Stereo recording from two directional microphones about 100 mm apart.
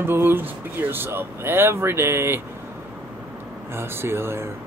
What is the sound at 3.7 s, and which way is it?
Speech, 25° right (ahead or behind).